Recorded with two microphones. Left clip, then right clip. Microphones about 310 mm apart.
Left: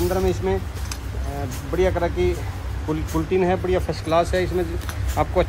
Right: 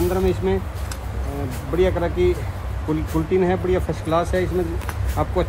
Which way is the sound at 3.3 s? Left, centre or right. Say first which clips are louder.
Right 1 dB; left.